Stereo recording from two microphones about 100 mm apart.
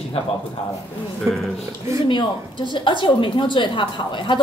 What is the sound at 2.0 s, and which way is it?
A woman's voice, 50° left (ahead or behind).